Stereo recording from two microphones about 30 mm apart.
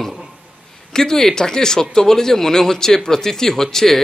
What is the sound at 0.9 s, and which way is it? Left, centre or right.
Speech, centre.